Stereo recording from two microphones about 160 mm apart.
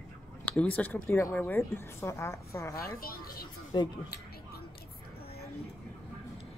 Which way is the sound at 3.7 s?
30° left (ahead or behind).